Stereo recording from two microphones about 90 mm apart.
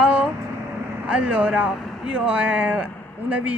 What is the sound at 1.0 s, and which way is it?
Speech, 15° right (ahead or behind).